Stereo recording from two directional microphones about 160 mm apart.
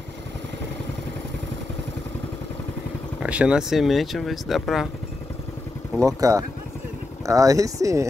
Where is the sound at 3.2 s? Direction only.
5° right (ahead or behind).